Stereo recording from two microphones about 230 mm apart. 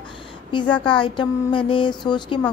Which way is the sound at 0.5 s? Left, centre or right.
Left.